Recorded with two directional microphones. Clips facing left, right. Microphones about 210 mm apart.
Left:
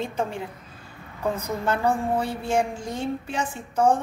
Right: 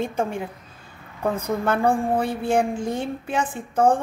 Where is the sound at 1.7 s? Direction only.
55° right (ahead or behind).